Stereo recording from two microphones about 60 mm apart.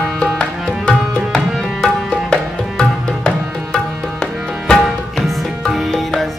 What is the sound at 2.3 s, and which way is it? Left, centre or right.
Music, centre.